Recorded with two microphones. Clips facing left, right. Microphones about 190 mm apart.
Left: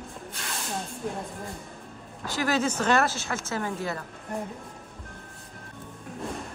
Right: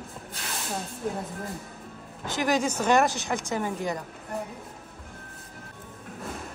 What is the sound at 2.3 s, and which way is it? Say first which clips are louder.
Speech: right 1 dB; 15° right (ahead or behind).